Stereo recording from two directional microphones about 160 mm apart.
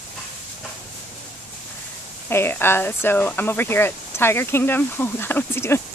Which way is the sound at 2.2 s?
15° left (ahead or behind).